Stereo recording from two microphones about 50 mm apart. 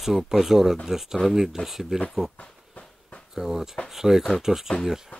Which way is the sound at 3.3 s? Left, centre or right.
Centre.